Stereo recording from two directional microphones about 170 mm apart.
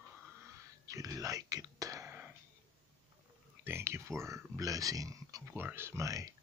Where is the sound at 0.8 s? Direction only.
20° right (ahead or behind).